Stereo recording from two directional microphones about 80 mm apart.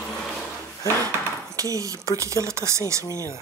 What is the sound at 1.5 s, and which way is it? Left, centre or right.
Speech, right.